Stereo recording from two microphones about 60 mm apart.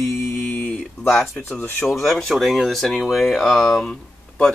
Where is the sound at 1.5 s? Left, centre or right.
Left.